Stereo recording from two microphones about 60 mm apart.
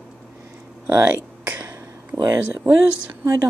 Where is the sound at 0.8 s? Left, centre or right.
Right.